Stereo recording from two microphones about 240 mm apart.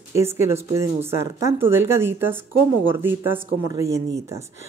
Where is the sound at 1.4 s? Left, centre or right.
Centre.